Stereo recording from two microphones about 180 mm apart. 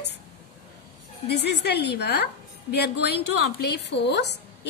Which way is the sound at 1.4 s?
70° left (ahead or behind).